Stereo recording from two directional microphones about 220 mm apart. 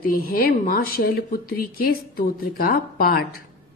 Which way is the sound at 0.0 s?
40° left (ahead or behind).